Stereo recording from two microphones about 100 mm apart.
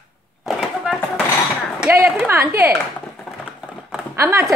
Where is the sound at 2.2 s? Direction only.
30° right (ahead or behind).